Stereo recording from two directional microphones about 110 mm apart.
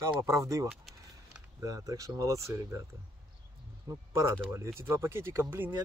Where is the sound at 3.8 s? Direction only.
25° right (ahead or behind).